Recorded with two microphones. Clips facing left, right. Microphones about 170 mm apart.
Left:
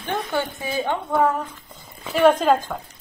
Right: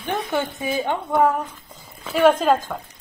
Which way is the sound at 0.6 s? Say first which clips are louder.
Right 1 dB; 20° right (ahead or behind).